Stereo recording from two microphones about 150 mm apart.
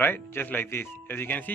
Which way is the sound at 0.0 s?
15° left (ahead or behind).